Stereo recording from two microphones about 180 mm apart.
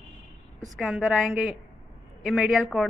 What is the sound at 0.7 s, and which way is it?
A woman's voice, centre (ahead or behind).